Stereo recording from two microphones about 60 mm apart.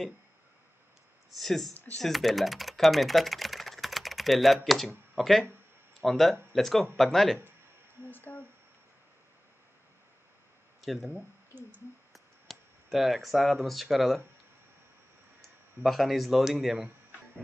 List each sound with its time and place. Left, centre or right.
1.3 s speech: centre
8.1 s a sound: left
10.8 s speech: centre
12.1 s speech: centre
15.8 s speech: centre